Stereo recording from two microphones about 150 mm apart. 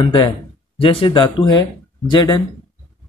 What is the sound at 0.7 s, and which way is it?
Speech, 35° left (ahead or behind).